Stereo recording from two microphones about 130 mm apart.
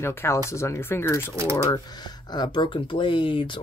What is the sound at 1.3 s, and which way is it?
Speech, 20° right (ahead or behind).